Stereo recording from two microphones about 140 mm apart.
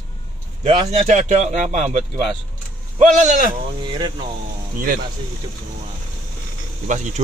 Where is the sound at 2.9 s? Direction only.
60° right (ahead or behind).